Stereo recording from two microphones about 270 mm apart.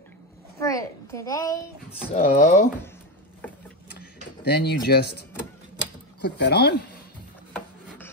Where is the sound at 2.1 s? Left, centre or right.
Left.